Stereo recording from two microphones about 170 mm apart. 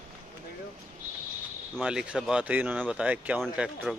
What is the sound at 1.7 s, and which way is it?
Speech, 5° right (ahead or behind).